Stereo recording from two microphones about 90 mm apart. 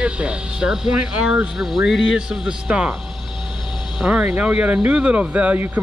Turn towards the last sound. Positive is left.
turn(degrees=-15)  # may be behind; listen again after turning